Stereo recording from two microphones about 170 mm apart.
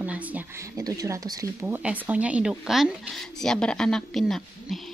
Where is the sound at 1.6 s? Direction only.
10° right (ahead or behind).